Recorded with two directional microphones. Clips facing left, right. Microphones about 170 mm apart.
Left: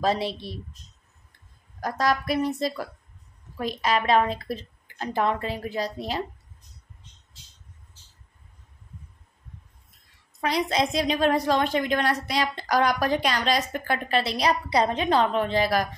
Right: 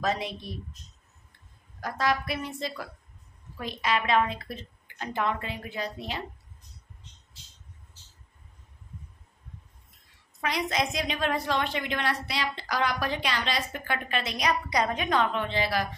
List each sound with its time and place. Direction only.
0.0 s a woman's voice: 30° left (ahead or behind)
1.8 s a woman's voice: 40° left (ahead or behind)
10.4 s a woman's voice: 35° left (ahead or behind)